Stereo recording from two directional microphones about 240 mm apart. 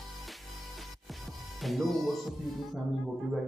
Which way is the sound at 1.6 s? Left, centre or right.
Centre.